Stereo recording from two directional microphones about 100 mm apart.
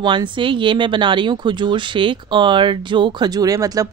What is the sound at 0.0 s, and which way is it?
Speech, 55° right (ahead or behind).